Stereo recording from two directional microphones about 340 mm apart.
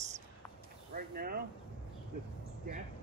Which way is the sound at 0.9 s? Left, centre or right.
Right.